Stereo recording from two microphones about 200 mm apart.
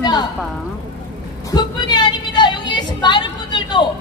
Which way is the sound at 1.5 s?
20° left (ahead or behind).